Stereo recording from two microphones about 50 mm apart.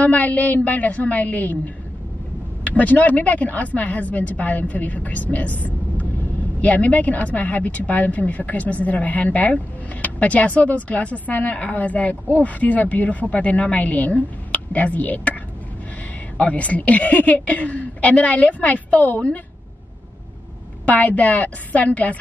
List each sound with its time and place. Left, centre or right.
0.0 s a woman's voice: left
2.6 s a woman's voice: left
16.3 s speech: left
20.8 s a woman's voice: left